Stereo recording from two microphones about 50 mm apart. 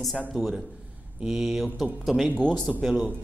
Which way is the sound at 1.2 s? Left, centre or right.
Centre.